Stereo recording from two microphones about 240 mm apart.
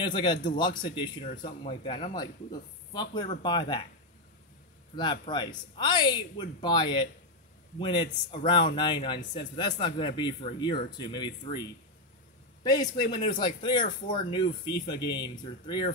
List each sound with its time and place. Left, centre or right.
0.0 s a man's voice: centre
4.9 s speech: centre
9.2 s speech: left
9.8 s speech: centre
12.6 s a man's voice: centre